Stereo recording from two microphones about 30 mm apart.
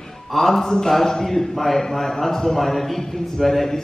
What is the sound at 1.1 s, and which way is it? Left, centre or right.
Speech, centre.